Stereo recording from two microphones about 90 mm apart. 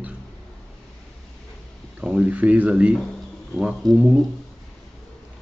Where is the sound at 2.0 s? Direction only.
15° right (ahead or behind).